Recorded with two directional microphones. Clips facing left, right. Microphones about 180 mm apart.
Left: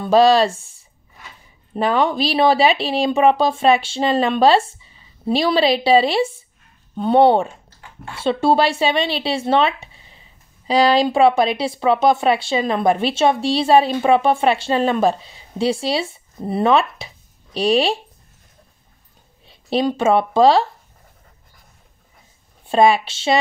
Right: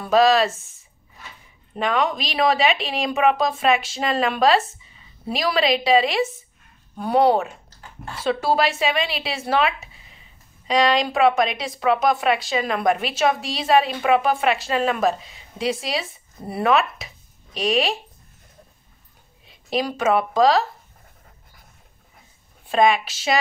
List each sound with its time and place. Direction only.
0.0 s speech: 30° left (ahead or behind)
1.8 s speech: 35° left (ahead or behind)
19.4 s a sound: 30° left (ahead or behind)
19.9 s speech: 30° left (ahead or behind)
22.7 s speech: 30° left (ahead or behind)